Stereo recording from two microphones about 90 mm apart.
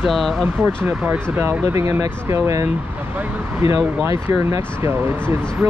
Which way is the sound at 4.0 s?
30° right (ahead or behind).